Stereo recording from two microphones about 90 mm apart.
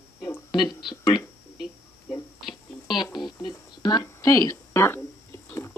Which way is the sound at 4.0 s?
35° left (ahead or behind).